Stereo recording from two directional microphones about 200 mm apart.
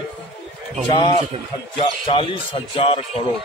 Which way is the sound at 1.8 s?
25° left (ahead or behind).